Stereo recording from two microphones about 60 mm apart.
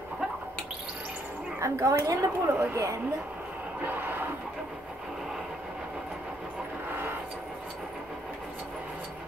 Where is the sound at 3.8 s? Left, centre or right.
Right.